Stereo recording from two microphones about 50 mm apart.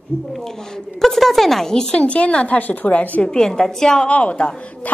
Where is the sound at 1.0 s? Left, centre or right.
Centre; by 3.3 s left.